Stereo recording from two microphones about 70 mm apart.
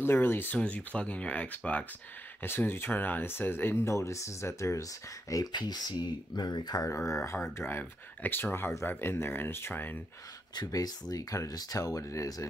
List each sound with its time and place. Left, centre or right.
0.0 s speech: left
0.6 s speech: centre
2.4 s speech: left
3.9 s speech: left
5.3 s speech: left
6.9 s speech: left
7.5 s speech: left
10.5 s speech: left